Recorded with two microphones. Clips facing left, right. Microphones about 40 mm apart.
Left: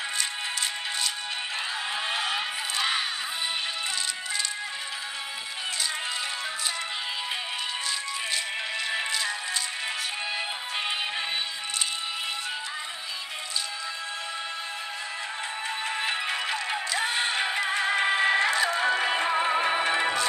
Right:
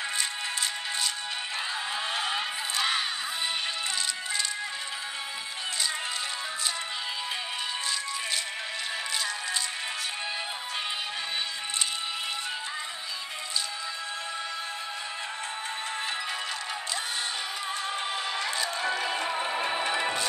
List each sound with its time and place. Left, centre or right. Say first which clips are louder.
2.0 s music: left 2 dB; left
2.3 s music: left 1 dB; centre
16.0 s music: left 5 dB; left